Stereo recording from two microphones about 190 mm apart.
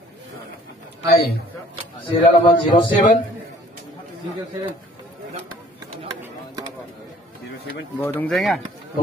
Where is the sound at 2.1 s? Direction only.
30° left (ahead or behind).